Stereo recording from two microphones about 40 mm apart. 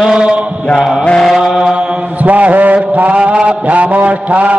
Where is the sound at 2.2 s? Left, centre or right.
Right.